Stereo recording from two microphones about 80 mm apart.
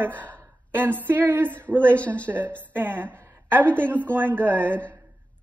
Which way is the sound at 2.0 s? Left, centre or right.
Centre.